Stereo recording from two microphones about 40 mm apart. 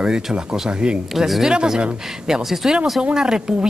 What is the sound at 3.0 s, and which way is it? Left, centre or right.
Speech, right.